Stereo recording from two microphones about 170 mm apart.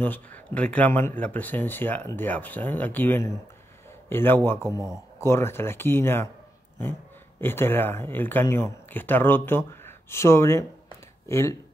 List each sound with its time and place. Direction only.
0.0 s speech: 10° left (ahead or behind)
4.6 s speech: 20° right (ahead or behind)
5.2 s speech: 15° left (ahead or behind)